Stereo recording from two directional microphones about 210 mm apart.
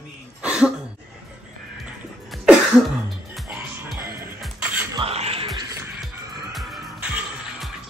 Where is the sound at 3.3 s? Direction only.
5° right (ahead or behind).